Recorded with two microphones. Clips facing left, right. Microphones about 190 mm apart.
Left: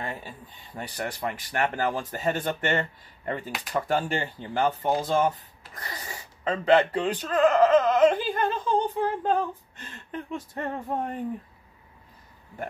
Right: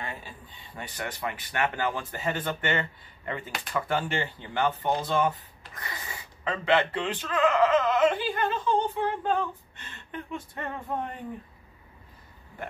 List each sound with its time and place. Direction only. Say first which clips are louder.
0.7 s speech: left 3 dB; 40° left (ahead or behind)